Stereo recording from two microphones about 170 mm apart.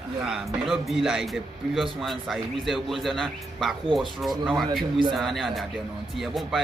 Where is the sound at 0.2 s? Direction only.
Centre (ahead or behind).